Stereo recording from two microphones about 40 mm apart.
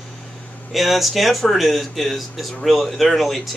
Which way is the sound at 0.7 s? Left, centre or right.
Centre.